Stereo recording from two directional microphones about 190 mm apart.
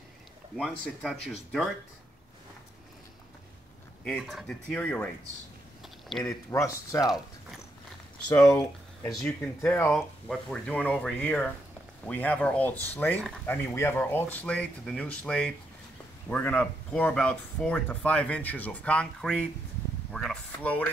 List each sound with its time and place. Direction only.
0.6 s speech: centre (ahead or behind)
4.0 s speech: 5° left (ahead or behind)
5.8 s a sound: centre (ahead or behind)
6.2 s speech: 15° left (ahead or behind)
8.5 s speech: 20° left (ahead or behind)